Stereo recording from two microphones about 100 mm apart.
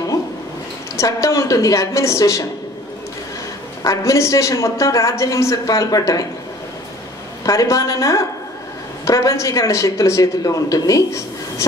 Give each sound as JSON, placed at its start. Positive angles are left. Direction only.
{"t": 0.9, "sound": "a man's voice", "side_deg": 35}
{"t": 3.8, "sound": "a man's voice", "side_deg": 30}
{"t": 7.4, "sound": "a man's voice", "side_deg": 35}